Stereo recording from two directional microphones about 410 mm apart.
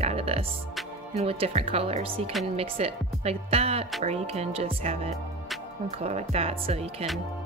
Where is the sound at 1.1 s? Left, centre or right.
Centre.